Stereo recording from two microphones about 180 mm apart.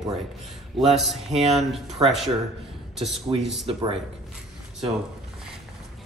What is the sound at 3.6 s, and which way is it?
Speech, 30° right (ahead or behind).